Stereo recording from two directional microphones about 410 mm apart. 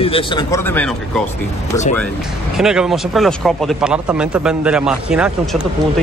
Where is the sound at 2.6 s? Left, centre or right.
Centre.